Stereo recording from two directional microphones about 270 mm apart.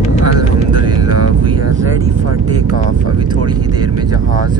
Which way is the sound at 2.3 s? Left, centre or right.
Right.